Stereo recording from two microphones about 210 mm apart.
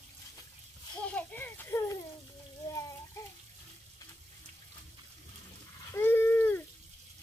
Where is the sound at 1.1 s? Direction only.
10° left (ahead or behind).